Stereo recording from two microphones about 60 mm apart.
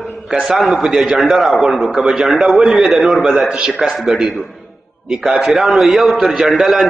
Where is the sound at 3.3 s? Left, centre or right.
Centre.